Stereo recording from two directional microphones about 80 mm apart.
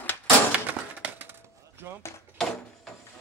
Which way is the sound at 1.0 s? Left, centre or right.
Right.